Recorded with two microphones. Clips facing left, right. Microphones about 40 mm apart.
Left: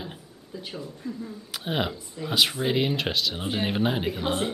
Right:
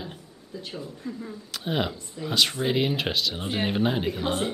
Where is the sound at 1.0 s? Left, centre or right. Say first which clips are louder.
Left 1 dB; centre.